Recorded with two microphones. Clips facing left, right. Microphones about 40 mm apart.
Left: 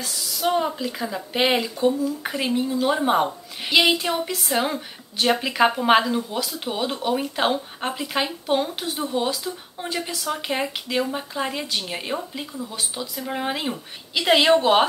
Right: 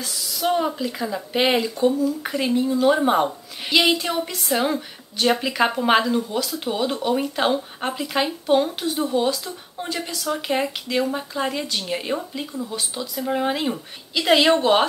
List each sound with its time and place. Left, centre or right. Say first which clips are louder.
0.0 s a woman's voice: even; centre